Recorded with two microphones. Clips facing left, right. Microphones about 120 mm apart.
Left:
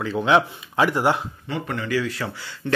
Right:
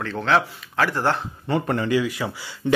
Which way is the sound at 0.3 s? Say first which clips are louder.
Left 2 dB; 15° left (ahead or behind).